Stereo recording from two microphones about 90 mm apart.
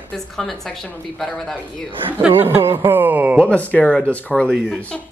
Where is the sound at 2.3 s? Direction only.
25° right (ahead or behind).